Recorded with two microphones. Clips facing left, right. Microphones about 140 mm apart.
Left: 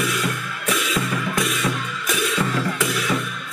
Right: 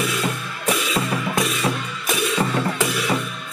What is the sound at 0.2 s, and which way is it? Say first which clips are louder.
Music: right 1 dB; 30° right (ahead or behind).